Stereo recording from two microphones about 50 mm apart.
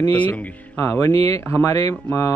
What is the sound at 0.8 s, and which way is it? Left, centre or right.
Speech, left.